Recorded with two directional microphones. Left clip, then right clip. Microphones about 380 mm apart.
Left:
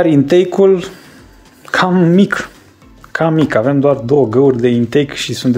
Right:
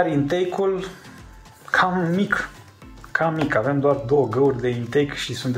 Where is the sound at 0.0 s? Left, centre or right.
Left.